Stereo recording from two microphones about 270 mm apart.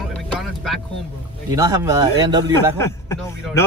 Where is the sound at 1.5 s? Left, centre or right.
Centre.